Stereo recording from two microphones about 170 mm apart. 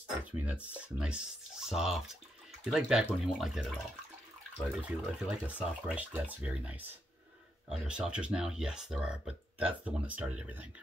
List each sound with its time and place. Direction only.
0.2 s speech: 10° right (ahead or behind)
4.8 s speech: 5° right (ahead or behind)